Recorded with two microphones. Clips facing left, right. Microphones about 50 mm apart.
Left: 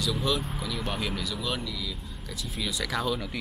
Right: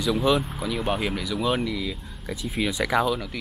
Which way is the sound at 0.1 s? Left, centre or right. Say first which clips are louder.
Right 11 dB; centre.